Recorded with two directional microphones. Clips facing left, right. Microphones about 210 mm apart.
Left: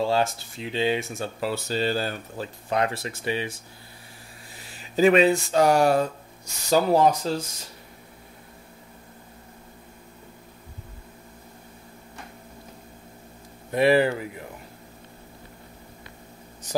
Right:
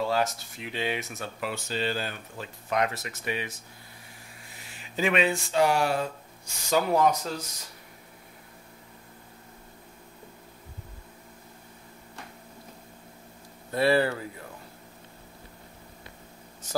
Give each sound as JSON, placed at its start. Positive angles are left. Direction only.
{"t": 0.0, "sound": "speech", "side_deg": 30}
{"t": 4.9, "sound": "speech", "side_deg": 40}
{"t": 13.7, "sound": "speech", "side_deg": 15}